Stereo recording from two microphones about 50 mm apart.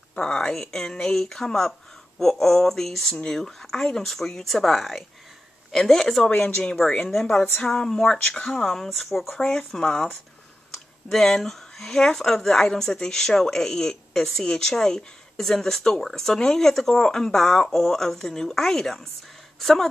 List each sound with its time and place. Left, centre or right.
0.1 s speech: centre
3.1 s speech: centre
3.3 s speech: centre
6.2 s speech: centre
9.4 s speech: centre